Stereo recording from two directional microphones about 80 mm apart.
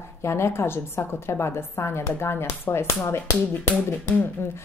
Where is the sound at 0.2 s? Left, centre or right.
Left.